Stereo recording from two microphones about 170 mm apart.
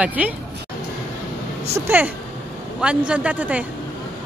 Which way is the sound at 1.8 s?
10° right (ahead or behind).